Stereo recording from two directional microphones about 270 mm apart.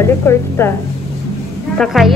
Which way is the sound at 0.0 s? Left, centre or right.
Centre.